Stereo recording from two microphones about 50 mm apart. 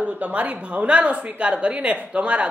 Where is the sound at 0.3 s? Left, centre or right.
Right.